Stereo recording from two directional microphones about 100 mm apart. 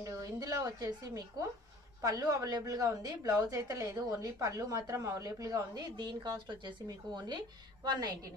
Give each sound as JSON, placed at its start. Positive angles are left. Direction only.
{"t": 0.0, "sound": "a woman's voice", "side_deg": -35}